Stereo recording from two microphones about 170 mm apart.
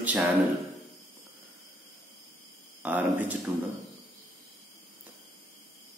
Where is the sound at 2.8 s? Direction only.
10° right (ahead or behind).